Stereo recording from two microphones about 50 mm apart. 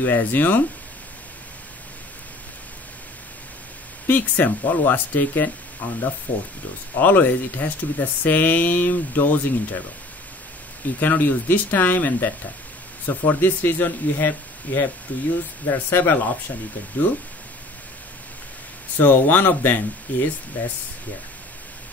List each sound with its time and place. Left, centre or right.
0.0 s speech: left
4.1 s speech: left
11.0 s speech: left
18.9 s speech: left